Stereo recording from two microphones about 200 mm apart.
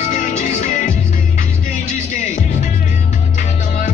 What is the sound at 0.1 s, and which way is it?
Music, 40° left (ahead or behind).